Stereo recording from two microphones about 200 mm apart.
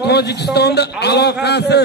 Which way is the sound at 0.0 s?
55° left (ahead or behind).